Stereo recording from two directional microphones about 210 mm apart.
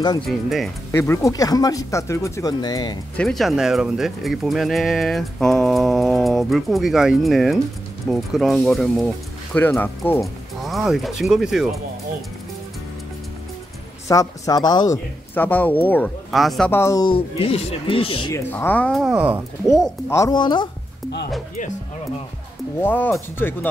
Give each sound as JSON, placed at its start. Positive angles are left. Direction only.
{"t": 0.3, "sound": "speech", "side_deg": 0}
{"t": 0.9, "sound": "a man's voice", "side_deg": 10}
{"t": 3.2, "sound": "speech", "side_deg": 0}
{"t": 14.0, "sound": "a man's voice", "side_deg": 15}
{"t": 18.3, "sound": "speech", "side_deg": 10}
{"t": 20.1, "sound": "a woman's voice", "side_deg": 15}
{"t": 22.8, "sound": "a man's voice", "side_deg": 10}